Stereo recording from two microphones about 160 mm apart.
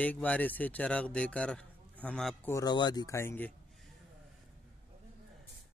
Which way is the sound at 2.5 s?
20° left (ahead or behind).